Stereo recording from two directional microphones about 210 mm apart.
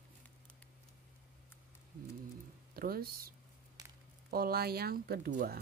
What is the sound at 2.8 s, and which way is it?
Speech, 45° right (ahead or behind).